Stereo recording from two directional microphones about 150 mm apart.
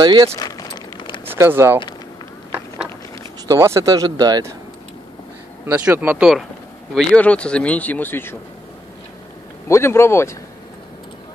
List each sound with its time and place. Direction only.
0.0 s speech: 30° right (ahead or behind)
0.4 s a sound: 25° left (ahead or behind)
1.2 s speech: 15° right (ahead or behind)
3.4 s speech: 20° right (ahead or behind)
5.7 s speech: 10° right (ahead or behind)
7.0 s speech: 10° left (ahead or behind)
9.7 s speech: 15° left (ahead or behind)